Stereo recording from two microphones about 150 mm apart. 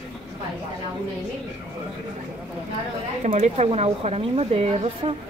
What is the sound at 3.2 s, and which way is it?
A woman's voice, 50° right (ahead or behind).